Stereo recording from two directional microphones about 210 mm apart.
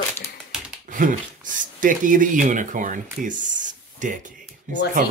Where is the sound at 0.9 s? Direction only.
40° right (ahead or behind).